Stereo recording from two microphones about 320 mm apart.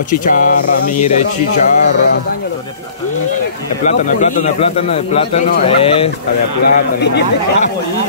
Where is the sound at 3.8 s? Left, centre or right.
Left.